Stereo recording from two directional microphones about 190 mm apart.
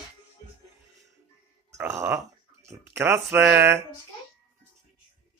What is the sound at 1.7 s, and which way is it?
Speech, 15° right (ahead or behind).